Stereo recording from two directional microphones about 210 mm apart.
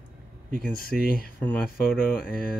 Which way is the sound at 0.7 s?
45° left (ahead or behind).